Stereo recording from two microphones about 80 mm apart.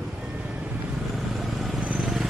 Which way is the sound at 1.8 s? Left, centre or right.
Centre.